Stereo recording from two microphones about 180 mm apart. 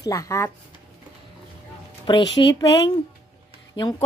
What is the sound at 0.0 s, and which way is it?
Speech, 20° left (ahead or behind).